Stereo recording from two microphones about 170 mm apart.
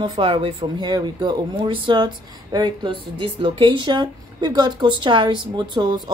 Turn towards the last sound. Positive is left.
turn(degrees=-25)  # may be behind; listen again after turning